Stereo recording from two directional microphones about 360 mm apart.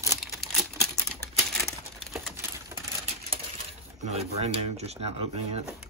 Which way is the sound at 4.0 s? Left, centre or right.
Centre.